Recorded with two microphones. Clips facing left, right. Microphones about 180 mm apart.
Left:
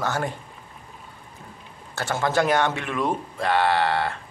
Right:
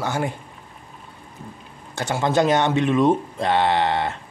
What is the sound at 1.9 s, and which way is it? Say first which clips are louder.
Speech: right 3 dB; 15° right (ahead or behind).